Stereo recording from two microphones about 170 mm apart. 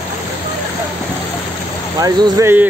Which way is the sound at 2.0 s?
20° right (ahead or behind).